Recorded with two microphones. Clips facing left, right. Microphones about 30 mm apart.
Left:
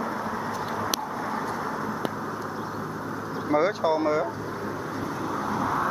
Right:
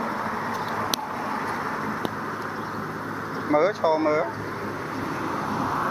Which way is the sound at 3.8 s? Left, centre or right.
Right.